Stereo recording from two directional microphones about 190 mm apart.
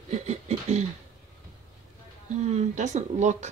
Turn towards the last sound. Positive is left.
turn(degrees=-40)  # may be behind; listen again after turning